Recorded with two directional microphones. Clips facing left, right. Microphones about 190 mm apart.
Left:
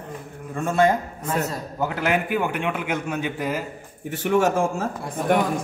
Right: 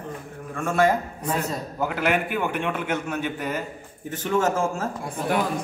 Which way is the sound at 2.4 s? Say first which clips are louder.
Left 1 dB; 10° left (ahead or behind).